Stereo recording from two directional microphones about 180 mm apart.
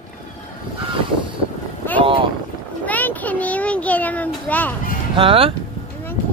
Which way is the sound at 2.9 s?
10° left (ahead or behind).